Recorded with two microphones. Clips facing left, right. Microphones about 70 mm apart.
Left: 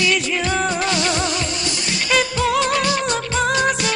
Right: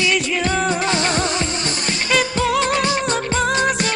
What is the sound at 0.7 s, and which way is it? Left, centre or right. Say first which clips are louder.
Music: right 1 dB; right.